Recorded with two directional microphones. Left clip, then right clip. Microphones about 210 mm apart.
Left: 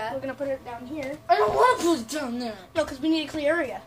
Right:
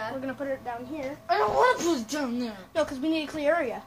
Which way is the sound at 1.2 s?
10° left (ahead or behind).